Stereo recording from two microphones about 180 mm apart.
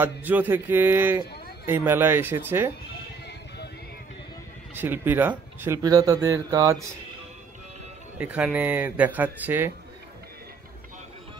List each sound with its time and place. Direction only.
0.0 s speech: 10° right (ahead or behind)
4.7 s speech: 10° right (ahead or behind)
8.2 s speech: 10° right (ahead or behind)